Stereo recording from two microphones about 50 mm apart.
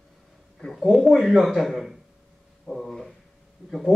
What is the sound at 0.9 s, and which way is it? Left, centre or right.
A man's voice, centre.